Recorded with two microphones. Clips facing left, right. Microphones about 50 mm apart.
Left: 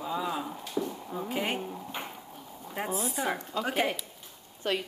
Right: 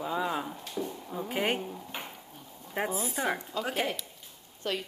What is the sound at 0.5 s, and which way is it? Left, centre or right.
Speech, centre.